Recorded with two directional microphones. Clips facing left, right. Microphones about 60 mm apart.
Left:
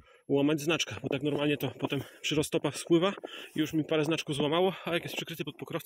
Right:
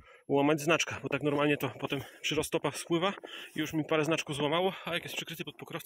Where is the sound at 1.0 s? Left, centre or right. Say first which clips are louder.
Right 1 dB; right.